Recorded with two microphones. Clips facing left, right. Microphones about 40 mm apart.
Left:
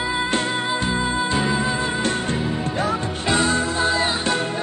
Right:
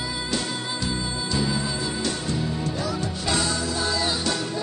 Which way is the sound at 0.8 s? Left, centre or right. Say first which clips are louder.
Left 7 dB; left.